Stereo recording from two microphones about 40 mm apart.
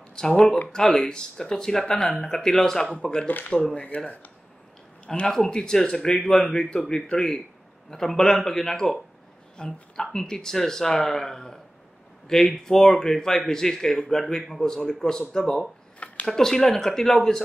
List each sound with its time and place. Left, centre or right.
0.2 s speech: centre
3.3 s speech: left
3.5 s speech: centre
5.2 s speech: centre
9.6 s speech: left
10.1 s speech: centre